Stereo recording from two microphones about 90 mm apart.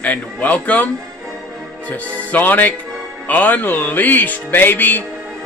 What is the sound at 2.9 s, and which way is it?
Music, centre (ahead or behind).